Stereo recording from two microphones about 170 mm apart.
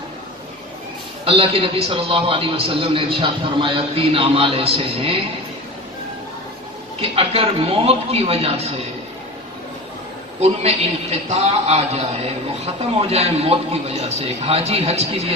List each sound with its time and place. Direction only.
1.2 s a man's voice: 35° right (ahead or behind)
7.0 s a man's voice: 35° right (ahead or behind)
10.4 s a man's voice: 40° right (ahead or behind)